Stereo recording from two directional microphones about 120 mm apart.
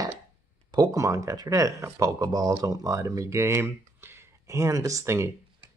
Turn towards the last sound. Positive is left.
turn(degrees=-25)  # may be behind; listen again after turning